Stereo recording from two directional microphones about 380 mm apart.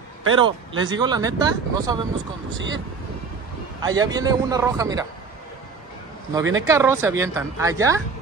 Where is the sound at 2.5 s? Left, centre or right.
Right.